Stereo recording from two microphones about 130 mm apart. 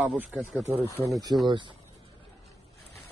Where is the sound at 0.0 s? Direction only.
10° right (ahead or behind).